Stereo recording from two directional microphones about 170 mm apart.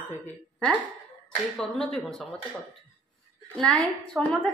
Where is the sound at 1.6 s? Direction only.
5° left (ahead or behind).